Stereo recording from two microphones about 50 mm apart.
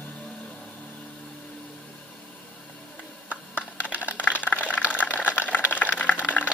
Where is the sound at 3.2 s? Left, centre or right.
Right.